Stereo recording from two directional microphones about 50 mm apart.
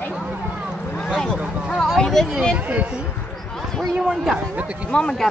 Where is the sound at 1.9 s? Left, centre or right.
Centre.